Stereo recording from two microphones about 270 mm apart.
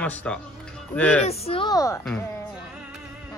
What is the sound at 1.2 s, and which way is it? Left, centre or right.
Speech, left.